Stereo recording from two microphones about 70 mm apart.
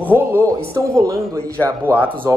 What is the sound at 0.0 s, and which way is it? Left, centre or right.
Speech, right.